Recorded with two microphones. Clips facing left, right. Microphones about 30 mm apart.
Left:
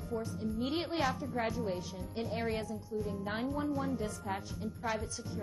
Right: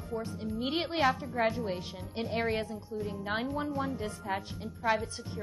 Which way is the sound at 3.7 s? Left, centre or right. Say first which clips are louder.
Right 1 dB; right.